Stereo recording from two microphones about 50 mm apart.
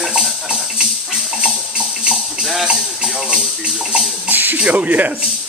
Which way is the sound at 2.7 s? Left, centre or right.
Centre.